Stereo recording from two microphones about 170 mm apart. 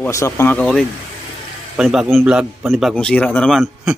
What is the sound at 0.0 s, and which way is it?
A man's voice, 15° left (ahead or behind).